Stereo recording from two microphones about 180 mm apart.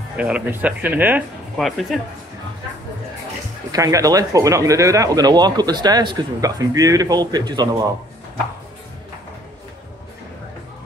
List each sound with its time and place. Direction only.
0.2 s speech: 10° right (ahead or behind)
3.7 s speech: 20° right (ahead or behind)